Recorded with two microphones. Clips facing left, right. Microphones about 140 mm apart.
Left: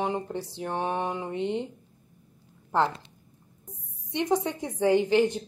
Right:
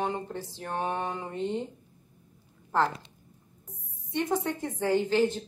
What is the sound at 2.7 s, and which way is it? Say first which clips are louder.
Speech: left 1 dB; 20° left (ahead or behind).